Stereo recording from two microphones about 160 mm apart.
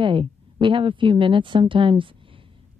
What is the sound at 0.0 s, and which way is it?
Speech, 30° right (ahead or behind).